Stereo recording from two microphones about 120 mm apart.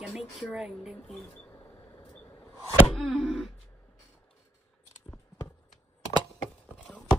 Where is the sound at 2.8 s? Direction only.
5° left (ahead or behind).